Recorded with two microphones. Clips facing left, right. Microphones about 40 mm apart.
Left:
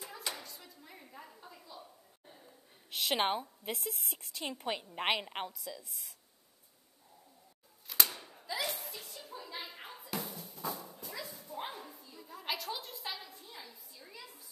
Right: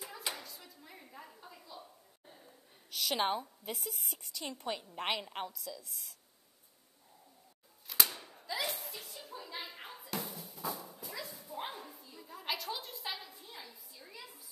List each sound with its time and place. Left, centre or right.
0.0 s a sound: centre
2.9 s a woman's voice: left
3.7 s speech: centre
4.5 s a woman's voice: left
5.5 s a woman's voice: centre
7.8 s a sound: centre